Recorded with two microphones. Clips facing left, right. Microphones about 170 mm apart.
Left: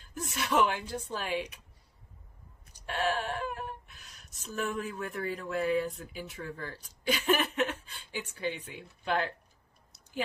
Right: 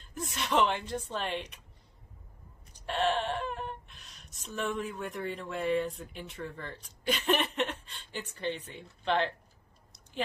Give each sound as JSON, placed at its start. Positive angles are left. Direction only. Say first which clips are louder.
{"t": 0.0, "sound": "speech", "louder": "left 1 dB", "side_deg": 5}
{"t": 2.9, "sound": "speech", "louder": "right 2 dB", "side_deg": 5}